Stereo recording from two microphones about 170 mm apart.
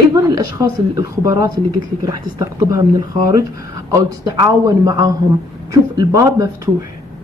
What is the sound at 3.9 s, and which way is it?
Speech, 20° right (ahead or behind).